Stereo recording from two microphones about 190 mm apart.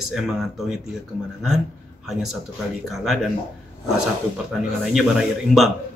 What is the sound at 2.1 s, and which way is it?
Speech, centre (ahead or behind).